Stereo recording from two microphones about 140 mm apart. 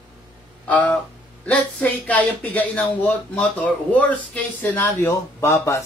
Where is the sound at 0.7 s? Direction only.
10° left (ahead or behind).